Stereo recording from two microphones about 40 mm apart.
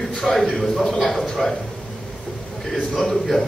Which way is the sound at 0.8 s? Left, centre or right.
Centre.